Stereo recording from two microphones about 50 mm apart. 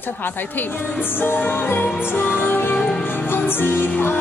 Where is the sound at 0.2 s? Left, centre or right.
Left.